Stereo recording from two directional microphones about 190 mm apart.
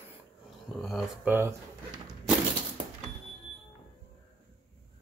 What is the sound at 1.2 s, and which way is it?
Speech, 15° right (ahead or behind).